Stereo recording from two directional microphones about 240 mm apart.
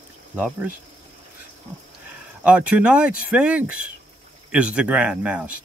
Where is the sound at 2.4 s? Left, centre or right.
Centre.